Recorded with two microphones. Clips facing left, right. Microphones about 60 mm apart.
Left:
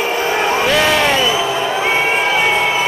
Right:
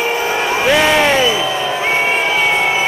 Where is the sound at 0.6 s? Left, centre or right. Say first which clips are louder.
Right 4 dB; centre.